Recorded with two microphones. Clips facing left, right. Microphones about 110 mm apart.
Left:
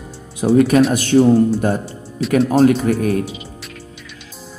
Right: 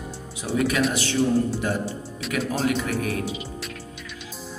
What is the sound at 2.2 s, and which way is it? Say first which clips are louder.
Speech: left 13 dB; centre (ahead or behind).